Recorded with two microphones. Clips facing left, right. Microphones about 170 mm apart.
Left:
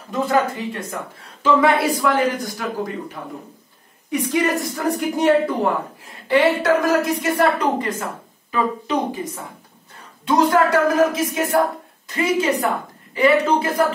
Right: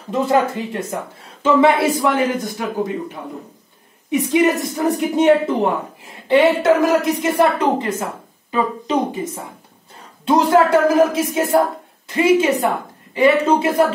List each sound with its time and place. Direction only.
0.1 s a woman's voice: 25° right (ahead or behind)
4.1 s a woman's voice: 20° right (ahead or behind)